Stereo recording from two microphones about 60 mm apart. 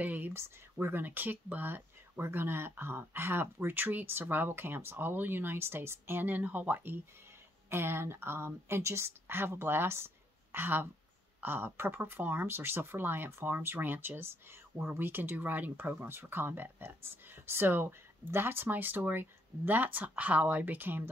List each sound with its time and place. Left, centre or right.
0.0 s speech: right
0.4 s speech: right
1.0 s speech: right